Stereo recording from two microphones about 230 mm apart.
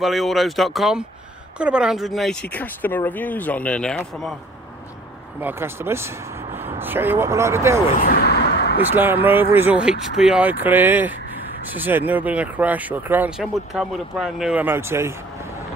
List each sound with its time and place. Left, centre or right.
0.0 s speech: centre
5.4 s speech: centre
8.0 s a sound: left
8.9 s speech: centre